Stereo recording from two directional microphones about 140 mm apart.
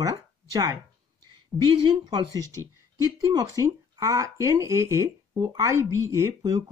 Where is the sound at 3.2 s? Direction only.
25° right (ahead or behind).